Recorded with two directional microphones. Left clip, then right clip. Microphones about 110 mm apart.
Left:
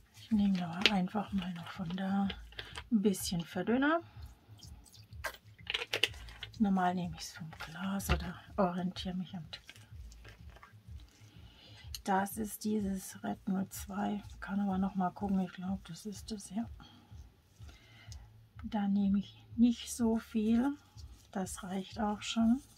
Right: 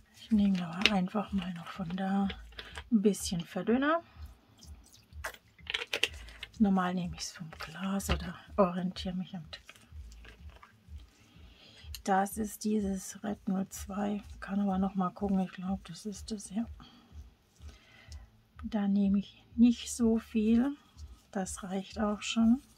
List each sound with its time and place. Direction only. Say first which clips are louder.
0.4 s speech: right 1 dB; 50° right (ahead or behind)
4.6 s music: left 1 dB; 20° right (ahead or behind)
5.6 s a sound: right 1 dB; 40° right (ahead or behind)
5.9 s speech: right 1 dB; 60° right (ahead or behind)
8.2 s speech: right 8 dB; 45° right (ahead or behind)
12.0 s speech: right 4 dB; 50° right (ahead or behind)
18.7 s speech: right 2 dB; 45° right (ahead or behind)